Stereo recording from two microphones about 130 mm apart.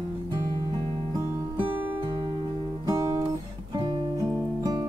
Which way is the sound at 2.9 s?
25° right (ahead or behind).